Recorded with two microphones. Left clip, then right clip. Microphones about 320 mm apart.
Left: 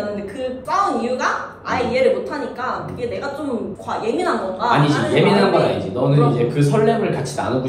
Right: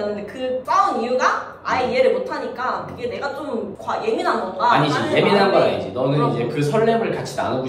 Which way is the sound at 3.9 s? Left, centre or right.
Centre.